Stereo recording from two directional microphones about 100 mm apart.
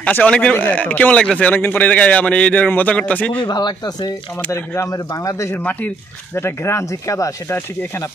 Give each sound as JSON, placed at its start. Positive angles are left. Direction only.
{"t": 0.0, "sound": "speech", "side_deg": 15}
{"t": 3.4, "sound": "speech", "side_deg": 45}
{"t": 4.5, "sound": "speech", "side_deg": 30}
{"t": 5.6, "sound": "speech", "side_deg": 15}